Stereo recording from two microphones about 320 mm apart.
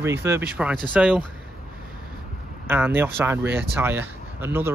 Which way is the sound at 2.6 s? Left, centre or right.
Centre.